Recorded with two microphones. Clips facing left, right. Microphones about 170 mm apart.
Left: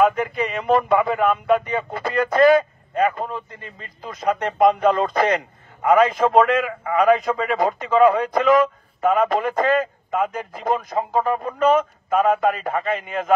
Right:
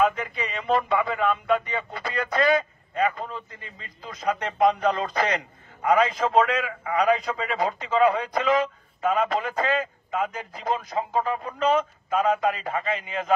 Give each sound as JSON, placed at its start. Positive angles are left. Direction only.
{"t": 0.0, "sound": "speech", "side_deg": 55}